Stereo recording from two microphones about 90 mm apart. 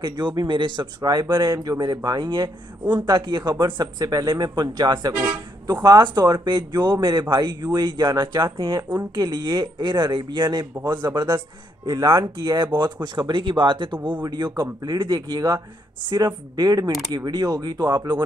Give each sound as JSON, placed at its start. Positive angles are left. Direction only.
{"t": 0.0, "sound": "speech", "side_deg": -60}
{"t": 1.3, "sound": "speech", "side_deg": -45}
{"t": 3.1, "sound": "speech", "side_deg": -40}
{"t": 6.0, "sound": "speech", "side_deg": -50}
{"t": 11.2, "sound": "speech", "side_deg": -40}
{"t": 12.7, "sound": "speech", "side_deg": -55}
{"t": 14.2, "sound": "speech", "side_deg": -45}